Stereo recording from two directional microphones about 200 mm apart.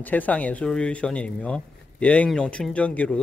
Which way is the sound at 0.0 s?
10° left (ahead or behind).